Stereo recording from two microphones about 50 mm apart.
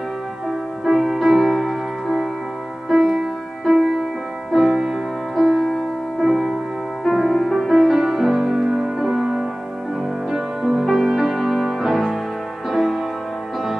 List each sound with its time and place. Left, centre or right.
0.5 s music: centre
5.3 s music: centre
6.2 s music: centre
7.7 s music: centre